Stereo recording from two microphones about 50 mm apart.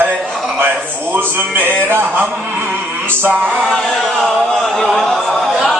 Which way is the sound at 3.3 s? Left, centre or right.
Right.